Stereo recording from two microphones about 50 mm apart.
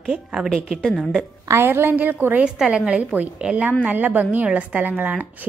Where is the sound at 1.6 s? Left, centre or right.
Right.